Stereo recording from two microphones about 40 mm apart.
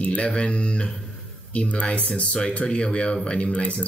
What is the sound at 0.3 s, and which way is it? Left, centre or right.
Speech, left.